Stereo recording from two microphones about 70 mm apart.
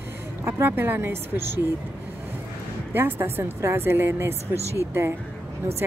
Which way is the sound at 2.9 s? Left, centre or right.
Right.